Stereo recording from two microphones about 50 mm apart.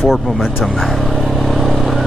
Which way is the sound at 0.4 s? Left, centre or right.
Centre.